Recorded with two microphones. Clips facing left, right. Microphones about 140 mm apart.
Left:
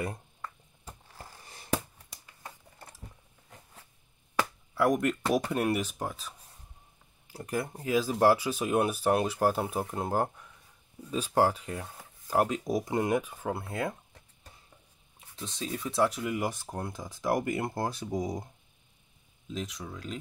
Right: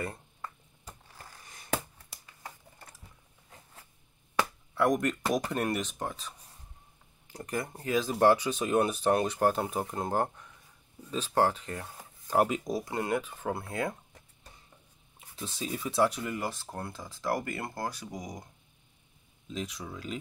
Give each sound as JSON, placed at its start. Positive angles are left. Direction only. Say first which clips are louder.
{"t": 1.5, "sound": "a sound", "louder": "left 2 dB", "side_deg": 30}
{"t": 4.4, "sound": "speech", "louder": "even", "side_deg": 5}
{"t": 7.3, "sound": "speech", "louder": "left 2 dB", "side_deg": 5}
{"t": 12.3, "sound": "speech", "louder": "right 1 dB", "side_deg": -5}
{"t": 12.6, "sound": "speech", "louder": "left 3 dB", "side_deg": 15}
{"t": 15.3, "sound": "speech", "louder": "even", "side_deg": -5}
{"t": 16.3, "sound": "speech", "louder": "left 3 dB", "side_deg": 15}
{"t": 19.5, "sound": "speech", "louder": "even", "side_deg": 0}